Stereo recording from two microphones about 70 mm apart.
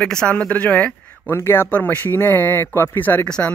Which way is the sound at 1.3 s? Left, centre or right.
Left.